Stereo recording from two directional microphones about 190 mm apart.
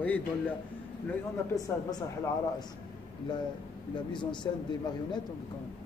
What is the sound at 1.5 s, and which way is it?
Speech, 20° left (ahead or behind).